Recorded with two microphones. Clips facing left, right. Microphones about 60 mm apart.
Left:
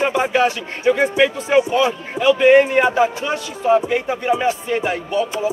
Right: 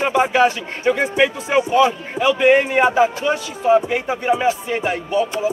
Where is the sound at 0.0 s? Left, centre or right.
Centre.